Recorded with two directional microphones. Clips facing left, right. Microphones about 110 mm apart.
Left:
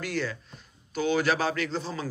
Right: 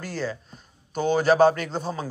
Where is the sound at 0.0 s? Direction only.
35° right (ahead or behind).